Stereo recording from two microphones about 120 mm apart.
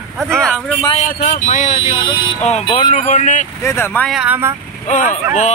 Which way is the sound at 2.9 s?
90° left.